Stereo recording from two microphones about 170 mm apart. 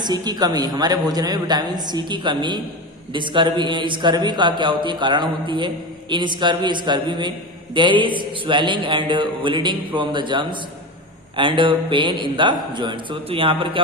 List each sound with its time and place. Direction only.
0.0 s a man's voice: 25° right (ahead or behind)